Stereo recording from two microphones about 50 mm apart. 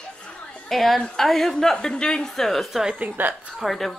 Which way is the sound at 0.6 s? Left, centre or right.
Centre.